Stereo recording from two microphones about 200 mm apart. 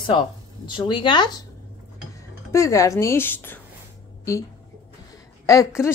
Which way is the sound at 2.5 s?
15° left (ahead or behind).